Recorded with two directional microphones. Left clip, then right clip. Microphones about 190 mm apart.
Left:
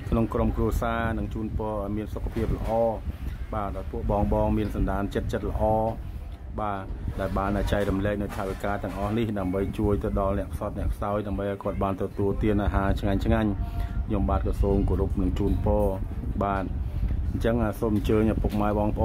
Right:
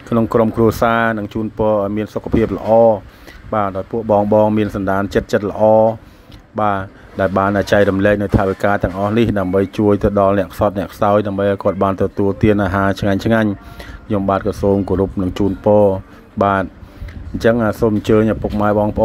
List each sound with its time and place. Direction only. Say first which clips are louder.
0.3 s speech: right 14 dB; 25° right (ahead or behind)